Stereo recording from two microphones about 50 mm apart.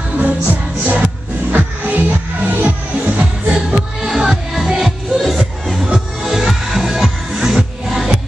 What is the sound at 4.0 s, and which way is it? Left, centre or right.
Music, centre.